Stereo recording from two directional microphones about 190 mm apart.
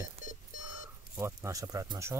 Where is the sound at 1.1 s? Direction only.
15° right (ahead or behind).